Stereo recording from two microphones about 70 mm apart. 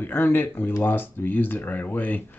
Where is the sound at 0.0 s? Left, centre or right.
Left.